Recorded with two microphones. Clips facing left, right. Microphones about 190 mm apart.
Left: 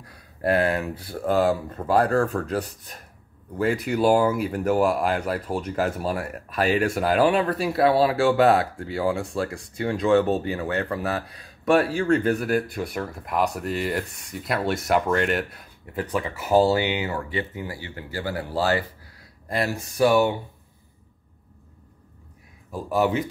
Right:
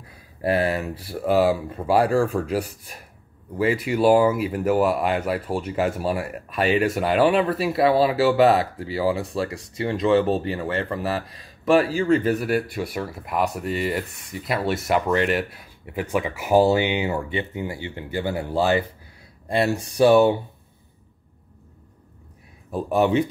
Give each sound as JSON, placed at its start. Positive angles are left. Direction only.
{"t": 0.0, "sound": "speech", "side_deg": -5}
{"t": 22.7, "sound": "speech", "side_deg": -25}